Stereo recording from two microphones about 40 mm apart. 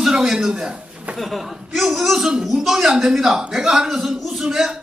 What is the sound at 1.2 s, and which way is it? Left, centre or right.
A man's voice, centre.